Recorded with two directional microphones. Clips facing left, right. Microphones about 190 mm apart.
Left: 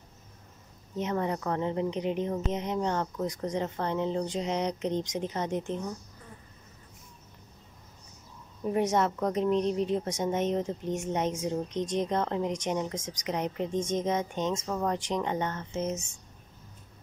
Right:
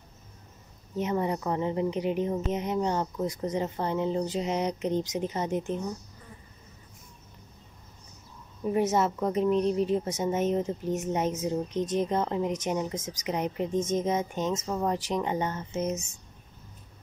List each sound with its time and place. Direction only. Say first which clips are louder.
0.9 s a woman's voice: right 2 dB; 10° right (ahead or behind)
8.6 s a woman's voice: right 1 dB; 5° right (ahead or behind)